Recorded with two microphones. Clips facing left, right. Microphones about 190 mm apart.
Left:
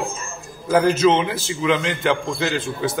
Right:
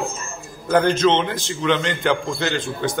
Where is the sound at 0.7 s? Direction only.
5° left (ahead or behind).